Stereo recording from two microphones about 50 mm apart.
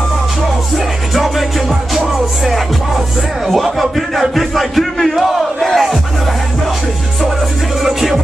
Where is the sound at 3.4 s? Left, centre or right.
Centre.